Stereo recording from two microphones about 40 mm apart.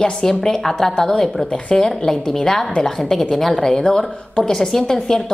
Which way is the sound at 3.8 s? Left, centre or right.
Left.